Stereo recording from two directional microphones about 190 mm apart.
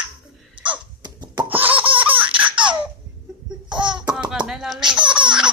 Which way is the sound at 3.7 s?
25° right (ahead or behind).